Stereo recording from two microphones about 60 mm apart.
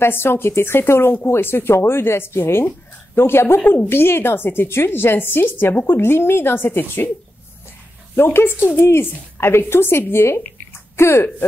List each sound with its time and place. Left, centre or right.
0.0 s speech: left
8.2 s speech: left